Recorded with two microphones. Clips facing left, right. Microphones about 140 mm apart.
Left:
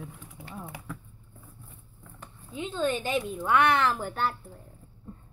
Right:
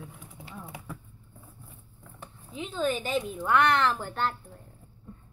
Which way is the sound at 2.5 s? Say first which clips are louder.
Left 1 dB; 5° right (ahead or behind).